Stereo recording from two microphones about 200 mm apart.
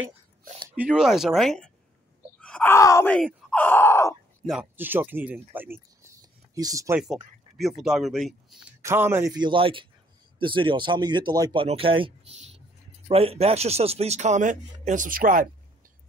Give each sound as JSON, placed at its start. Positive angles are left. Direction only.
{"t": 0.7, "sound": "speech", "side_deg": -5}
{"t": 4.5, "sound": "speech", "side_deg": -5}
{"t": 7.5, "sound": "speech", "side_deg": 0}
{"t": 8.8, "sound": "speech", "side_deg": -10}